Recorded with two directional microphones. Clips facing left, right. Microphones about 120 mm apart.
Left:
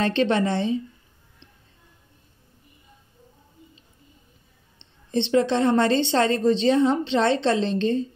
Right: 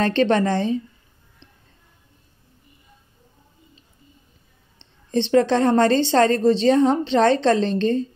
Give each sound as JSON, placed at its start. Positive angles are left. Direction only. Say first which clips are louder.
{"t": 0.0, "sound": "a woman's voice", "louder": "right 3 dB", "side_deg": -40}
{"t": 5.1, "sound": "a woman's voice", "louder": "right 3 dB", "side_deg": -45}